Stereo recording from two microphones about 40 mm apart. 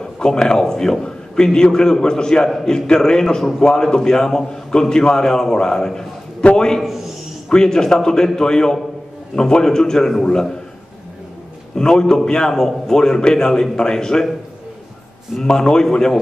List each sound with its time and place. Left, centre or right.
0.0 s a man's voice: centre
11.7 s a man's voice: centre
15.4 s a man's voice: centre